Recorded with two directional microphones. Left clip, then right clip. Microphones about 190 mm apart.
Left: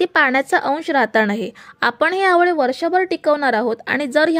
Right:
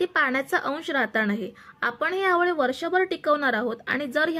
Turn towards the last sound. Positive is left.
turn(degrees=40)  # may be behind; listen again after turning